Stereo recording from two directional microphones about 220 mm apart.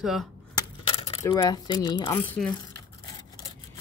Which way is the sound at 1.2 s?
15° left (ahead or behind).